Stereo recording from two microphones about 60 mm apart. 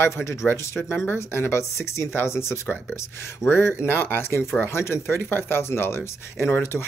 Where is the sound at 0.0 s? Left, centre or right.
Left.